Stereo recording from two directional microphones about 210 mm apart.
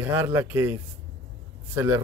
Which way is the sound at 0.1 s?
10° right (ahead or behind).